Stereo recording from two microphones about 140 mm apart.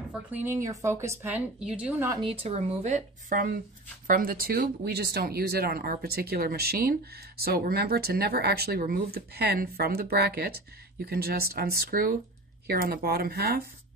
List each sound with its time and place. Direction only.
0.1 s speech: 10° right (ahead or behind)
2.2 s speech: 45° right (ahead or behind); by 3.5 s 70° right (ahead or behind)
4.1 s speech: 90° right